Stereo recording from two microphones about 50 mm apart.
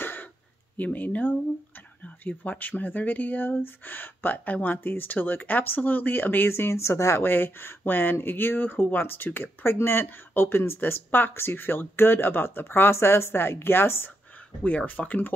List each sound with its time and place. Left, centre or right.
0.0 s a sound: left
0.7 s speech: left
6.5 s speech: left
7.2 s speech: left
12.9 s speech: left
14.6 s speech: left